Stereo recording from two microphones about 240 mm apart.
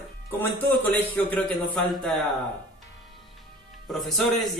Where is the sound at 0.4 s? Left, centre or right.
Centre.